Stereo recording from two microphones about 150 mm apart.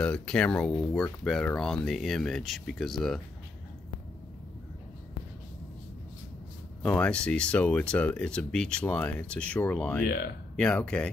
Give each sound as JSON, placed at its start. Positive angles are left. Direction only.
{"t": 0.0, "sound": "speech", "side_deg": 5}
{"t": 6.8, "sound": "speech", "side_deg": 10}
{"t": 10.0, "sound": "speech", "side_deg": 90}
{"t": 10.5, "sound": "speech", "side_deg": 5}